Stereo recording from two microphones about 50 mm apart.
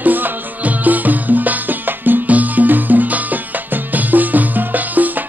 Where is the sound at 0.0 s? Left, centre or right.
Right.